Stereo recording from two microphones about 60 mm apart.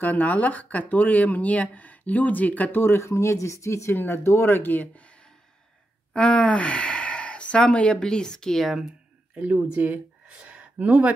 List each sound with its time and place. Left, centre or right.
0.0 s speech: left
2.8 s speech: left
3.9 s speech: left; by 8.6 s centre
8.7 s speech: centre
10.2 s a sound: centre